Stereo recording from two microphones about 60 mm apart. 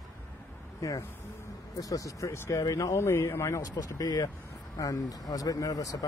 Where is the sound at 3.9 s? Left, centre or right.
Left.